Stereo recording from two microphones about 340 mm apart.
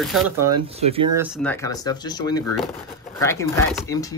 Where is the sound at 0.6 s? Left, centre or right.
Centre.